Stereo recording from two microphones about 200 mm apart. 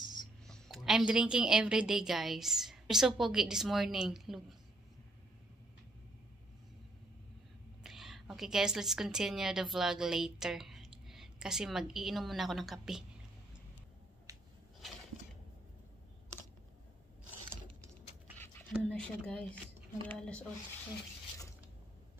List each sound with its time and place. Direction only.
0.0 s a sound: 20° left (ahead or behind)
0.5 s a woman's voice: centre (ahead or behind)
7.8 s a woman's voice: centre (ahead or behind)
18.7 s a woman's voice: 5° left (ahead or behind)